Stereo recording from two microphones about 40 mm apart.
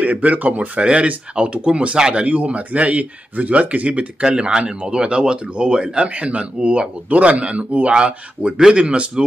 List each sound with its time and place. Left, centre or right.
0.0 s speech: right
0.7 s speech: right
2.2 s speech: right
4.4 s speech: right